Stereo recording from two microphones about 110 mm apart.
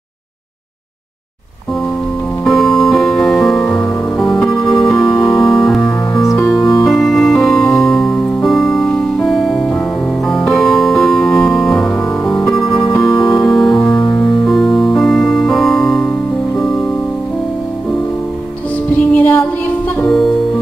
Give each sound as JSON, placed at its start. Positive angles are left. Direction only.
{"t": 2.4, "sound": "music", "side_deg": 0}
{"t": 13.0, "sound": "keyboard", "side_deg": 0}
{"t": 13.8, "sound": "keyboard", "side_deg": 45}
{"t": 14.4, "sound": "music", "side_deg": 5}
{"t": 18.9, "sound": "music", "side_deg": 15}